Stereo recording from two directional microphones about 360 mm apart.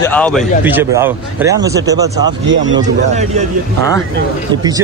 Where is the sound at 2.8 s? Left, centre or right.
Centre.